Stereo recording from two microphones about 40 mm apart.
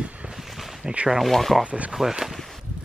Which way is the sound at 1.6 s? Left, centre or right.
Right.